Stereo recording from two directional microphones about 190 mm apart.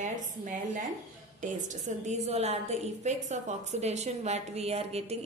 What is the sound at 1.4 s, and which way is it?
A woman's voice, 40° right (ahead or behind).